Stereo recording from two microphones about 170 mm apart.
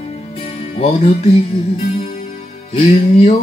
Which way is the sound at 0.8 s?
40° left (ahead or behind).